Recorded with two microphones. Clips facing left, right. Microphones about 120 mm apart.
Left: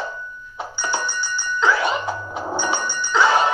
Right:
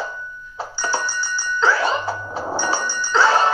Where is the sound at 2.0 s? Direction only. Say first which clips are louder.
Right 1 dB; 15° left (ahead or behind).